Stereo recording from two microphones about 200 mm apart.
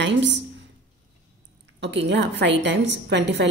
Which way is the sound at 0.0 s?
60° right (ahead or behind).